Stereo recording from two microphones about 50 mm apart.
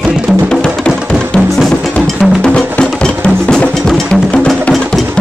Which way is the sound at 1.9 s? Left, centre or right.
Left.